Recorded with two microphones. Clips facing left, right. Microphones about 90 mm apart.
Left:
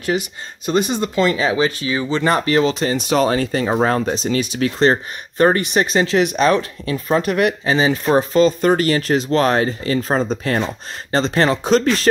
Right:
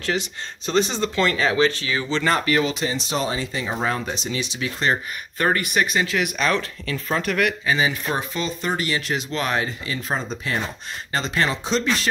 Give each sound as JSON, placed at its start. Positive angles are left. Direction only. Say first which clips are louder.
{"t": 0.0, "sound": "speech", "louder": "left 4 dB", "side_deg": 10}
{"t": 2.4, "sound": "speech", "louder": "left 5 dB", "side_deg": 35}
{"t": 2.9, "sound": "speech", "louder": "left 8 dB", "side_deg": 60}
{"t": 3.7, "sound": "speech", "louder": "left 7 dB", "side_deg": 45}
{"t": 4.3, "sound": "speech", "louder": "left 8 dB", "side_deg": 50}
{"t": 5.4, "sound": "speech", "louder": "left 6 dB", "side_deg": 25}
{"t": 11.1, "sound": "speech", "louder": "left 7 dB", "side_deg": 35}
{"t": 11.6, "sound": "speech", "louder": "left 7 dB", "side_deg": 50}